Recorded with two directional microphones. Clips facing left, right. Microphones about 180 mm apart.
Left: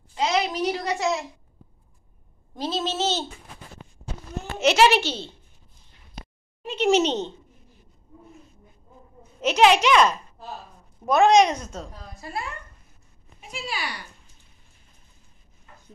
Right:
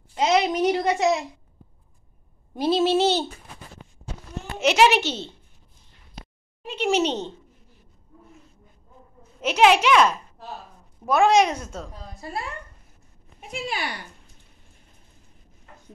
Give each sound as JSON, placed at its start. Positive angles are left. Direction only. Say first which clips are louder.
{"t": 0.2, "sound": "a sound", "louder": "right 4 dB", "side_deg": -20}
{"t": 2.5, "sound": "a sound", "louder": "right 8 dB", "side_deg": -10}
{"t": 4.6, "sound": "a child's voice", "louder": "even", "side_deg": -15}
{"t": 6.6, "sound": "a woman's voice", "louder": "left 2 dB", "side_deg": -10}
{"t": 9.4, "sound": "a child's voice", "louder": "even", "side_deg": -10}
{"t": 13.4, "sound": "a child's voice", "louder": "right 3 dB", "side_deg": -55}